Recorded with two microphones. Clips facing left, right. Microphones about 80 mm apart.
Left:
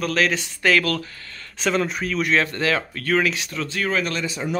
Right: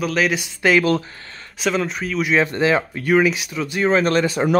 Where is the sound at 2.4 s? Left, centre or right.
Right.